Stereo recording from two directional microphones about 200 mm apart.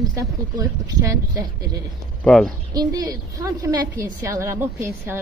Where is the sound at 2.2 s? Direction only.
5° left (ahead or behind).